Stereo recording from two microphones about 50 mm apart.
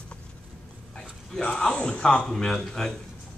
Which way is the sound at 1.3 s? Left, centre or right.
Centre.